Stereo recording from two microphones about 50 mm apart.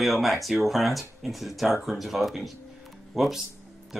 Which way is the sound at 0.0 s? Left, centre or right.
Centre.